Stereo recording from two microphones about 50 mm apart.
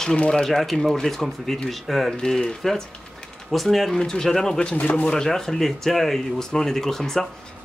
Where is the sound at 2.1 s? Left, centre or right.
Centre.